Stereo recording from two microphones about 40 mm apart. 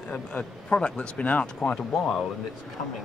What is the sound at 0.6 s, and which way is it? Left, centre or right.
Speech, left.